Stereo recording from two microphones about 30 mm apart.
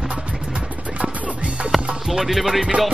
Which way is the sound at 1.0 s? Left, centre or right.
Right.